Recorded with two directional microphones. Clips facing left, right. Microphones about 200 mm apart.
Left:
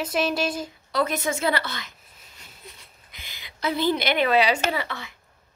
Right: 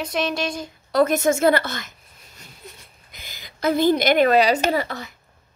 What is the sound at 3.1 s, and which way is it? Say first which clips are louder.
A woman's voice: right 3 dB; 45° right (ahead or behind).